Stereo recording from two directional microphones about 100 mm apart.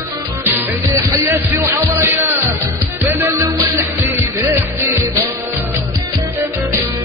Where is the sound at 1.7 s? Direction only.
20° right (ahead or behind).